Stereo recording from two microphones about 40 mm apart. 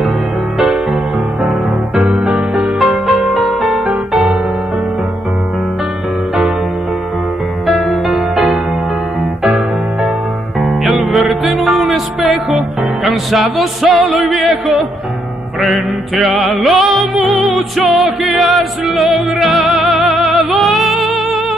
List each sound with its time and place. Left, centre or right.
2.1 s music: right
2.8 s music: centre
7.9 s music: centre
11.1 s music: centre
16.2 s music: centre